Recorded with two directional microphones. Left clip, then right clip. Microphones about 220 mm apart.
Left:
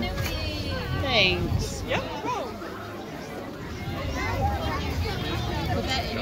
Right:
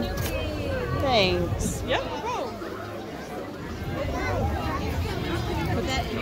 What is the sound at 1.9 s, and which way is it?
Music, 45° right (ahead or behind).